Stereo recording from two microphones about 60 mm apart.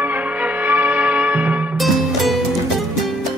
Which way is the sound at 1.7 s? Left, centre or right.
Centre.